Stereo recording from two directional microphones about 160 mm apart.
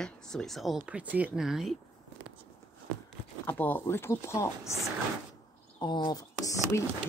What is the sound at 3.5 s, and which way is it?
Speech, 10° left (ahead or behind).